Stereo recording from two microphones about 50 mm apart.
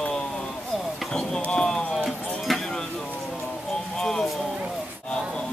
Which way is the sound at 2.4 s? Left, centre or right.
Centre.